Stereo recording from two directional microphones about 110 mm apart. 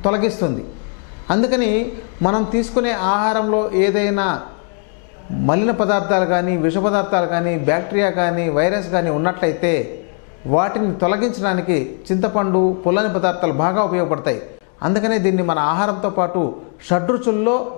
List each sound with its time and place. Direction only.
0.0 s speech: 15° left (ahead or behind)
5.5 s speech: 15° left (ahead or behind)